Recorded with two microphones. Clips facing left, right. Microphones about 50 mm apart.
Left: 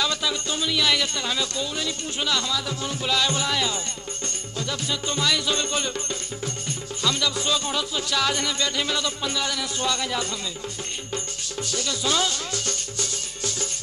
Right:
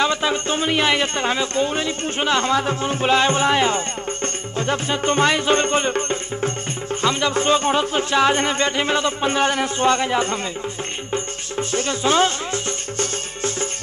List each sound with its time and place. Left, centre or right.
0.0 s speech: right
11.1 s music: right